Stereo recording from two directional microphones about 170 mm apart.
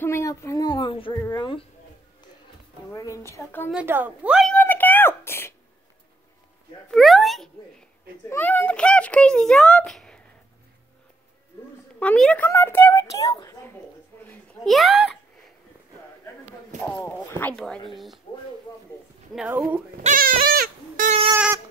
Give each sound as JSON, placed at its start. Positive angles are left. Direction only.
{"t": 0.0, "sound": "speech", "side_deg": 15}
{"t": 2.9, "sound": "a child's voice", "side_deg": 20}
{"t": 3.7, "sound": "a woman's voice", "side_deg": -10}
{"t": 4.5, "sound": "a sound", "side_deg": 10}
{"t": 6.9, "sound": "speech", "side_deg": 0}
{"t": 8.3, "sound": "a child's voice", "side_deg": 10}
{"t": 12.0, "sound": "a child's voice", "side_deg": 5}
{"t": 14.2, "sound": "babbling", "side_deg": 10}
{"t": 14.7, "sound": "speech", "side_deg": 0}
{"t": 16.8, "sound": "a child's voice", "side_deg": 10}
{"t": 19.3, "sound": "a woman's voice", "side_deg": -10}
{"t": 20.0, "sound": "goat", "side_deg": -50}